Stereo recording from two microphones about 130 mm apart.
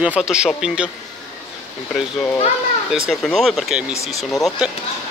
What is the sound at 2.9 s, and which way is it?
Speech, centre (ahead or behind).